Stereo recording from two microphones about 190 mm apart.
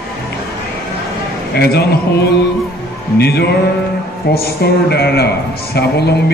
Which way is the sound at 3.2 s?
60° left (ahead or behind).